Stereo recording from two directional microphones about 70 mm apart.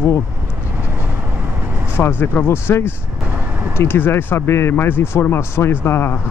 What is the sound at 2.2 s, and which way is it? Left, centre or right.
Speech, left.